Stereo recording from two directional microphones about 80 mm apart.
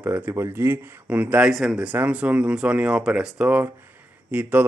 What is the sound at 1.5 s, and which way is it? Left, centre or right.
Speech, centre.